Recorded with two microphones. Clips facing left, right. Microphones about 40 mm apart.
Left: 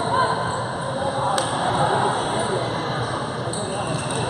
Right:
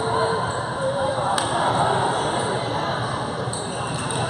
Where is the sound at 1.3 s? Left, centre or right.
Centre.